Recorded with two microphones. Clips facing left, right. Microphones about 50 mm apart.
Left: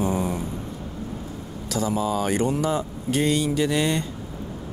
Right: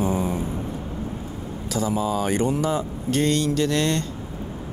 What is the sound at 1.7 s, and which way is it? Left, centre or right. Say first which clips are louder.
Speech: even; centre.